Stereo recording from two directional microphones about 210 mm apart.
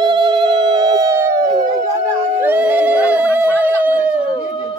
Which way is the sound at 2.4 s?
5° right (ahead or behind).